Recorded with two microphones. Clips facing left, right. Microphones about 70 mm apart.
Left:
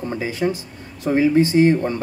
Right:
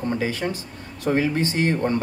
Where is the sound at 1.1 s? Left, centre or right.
Centre.